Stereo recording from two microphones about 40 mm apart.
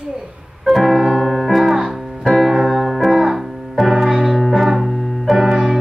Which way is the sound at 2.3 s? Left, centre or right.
Centre.